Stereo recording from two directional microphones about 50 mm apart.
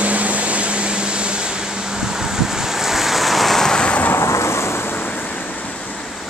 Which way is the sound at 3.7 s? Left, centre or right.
Centre.